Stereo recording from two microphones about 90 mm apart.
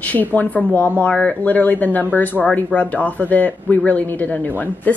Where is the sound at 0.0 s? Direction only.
20° left (ahead or behind).